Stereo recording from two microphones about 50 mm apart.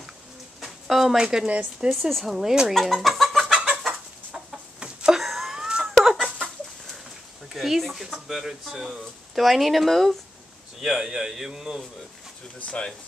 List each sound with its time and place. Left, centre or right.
0.6 s a sound: centre
1.1 s speech: centre
1.5 s speech: right
1.9 s speech: centre
2.7 s chicken: centre
4.7 s chicken: centre
5.1 s a sound: centre
5.9 s chicken: centre
6.3 s chicken: centre
7.5 s speech: centre
12.6 s speech: centre